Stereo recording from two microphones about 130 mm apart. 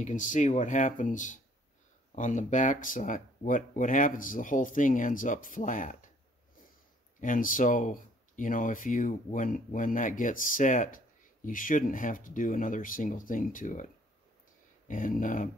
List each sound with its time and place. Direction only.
0.0 s speech: 80° left
7.2 s speech: 90° left
11.4 s speech: 90° left
14.9 s speech: 90° left